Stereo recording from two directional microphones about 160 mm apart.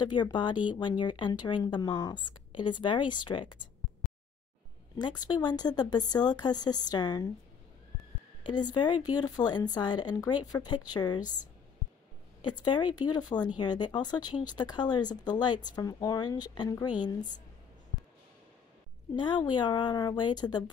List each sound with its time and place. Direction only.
0.0 s speech: 30° left (ahead or behind)
4.0 s a sound: centre (ahead or behind)
4.9 s speech: 25° left (ahead or behind)
8.5 s speech: 25° left (ahead or behind)
12.4 s speech: 25° left (ahead or behind)
19.1 s speech: 30° left (ahead or behind)